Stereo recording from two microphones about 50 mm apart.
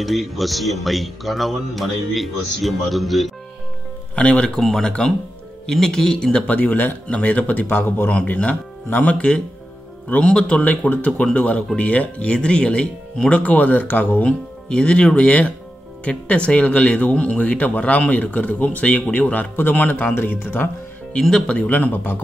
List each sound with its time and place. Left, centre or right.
0.0 s speech: centre
4.1 s speech: left
4.6 s speech: centre
6.4 s speech: left
7.6 s speech: left
8.1 s speech: left
10.6 s speech: left
14.2 s speech: centre; by 20.2 s left
20.2 s speech: left
21.2 s speech: centre
21.5 s speech: left